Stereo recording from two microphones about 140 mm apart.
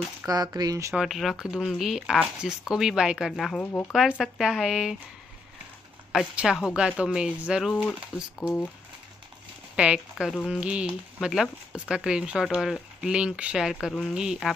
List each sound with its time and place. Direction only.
0.3 s speech: 25° right (ahead or behind)
0.9 s speech: centre (ahead or behind)
6.1 s speech: 5° right (ahead or behind)
9.8 s speech: 5° right (ahead or behind)